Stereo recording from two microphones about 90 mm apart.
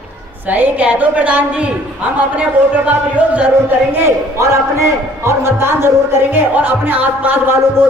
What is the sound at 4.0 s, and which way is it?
A man's voice, 35° right (ahead or behind).